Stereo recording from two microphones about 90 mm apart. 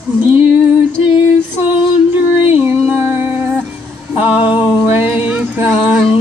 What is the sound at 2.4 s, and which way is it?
Music, 20° right (ahead or behind).